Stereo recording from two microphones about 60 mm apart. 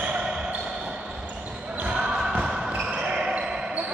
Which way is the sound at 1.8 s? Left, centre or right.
Centre.